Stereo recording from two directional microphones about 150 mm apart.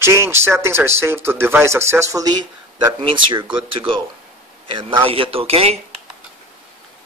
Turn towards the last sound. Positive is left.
turn(degrees=-40)  # may be behind; listen again after turning